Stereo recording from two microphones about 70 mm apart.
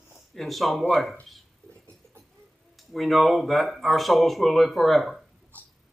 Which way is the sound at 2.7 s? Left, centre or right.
Centre.